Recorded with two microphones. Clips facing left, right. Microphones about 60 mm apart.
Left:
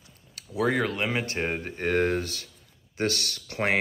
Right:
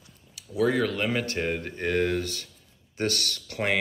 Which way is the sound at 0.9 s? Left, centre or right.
Centre.